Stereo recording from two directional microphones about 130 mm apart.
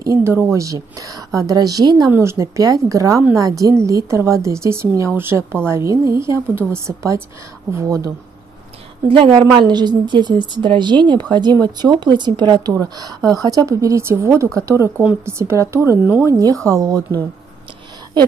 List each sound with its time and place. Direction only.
0.0 s a woman's voice: 20° right (ahead or behind)
9.0 s a woman's voice: 45° right (ahead or behind); by 17.0 s 25° right (ahead or behind)